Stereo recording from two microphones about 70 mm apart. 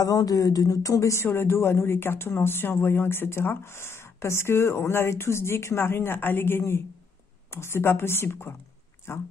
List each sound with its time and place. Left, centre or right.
0.0 s speech: left
1.2 s speech: left